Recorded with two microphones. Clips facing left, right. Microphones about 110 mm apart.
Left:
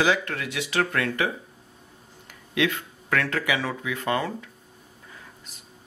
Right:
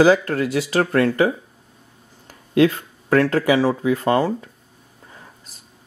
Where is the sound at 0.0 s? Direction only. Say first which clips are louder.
Right 9 dB; 35° right (ahead or behind).